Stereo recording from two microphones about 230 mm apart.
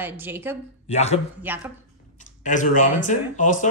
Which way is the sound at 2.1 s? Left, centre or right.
Left.